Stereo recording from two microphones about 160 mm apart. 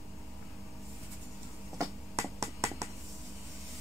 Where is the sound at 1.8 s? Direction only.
20° right (ahead or behind).